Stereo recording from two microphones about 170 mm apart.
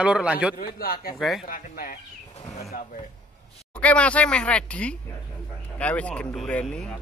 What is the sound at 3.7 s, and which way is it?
Speech, 5° left (ahead or behind).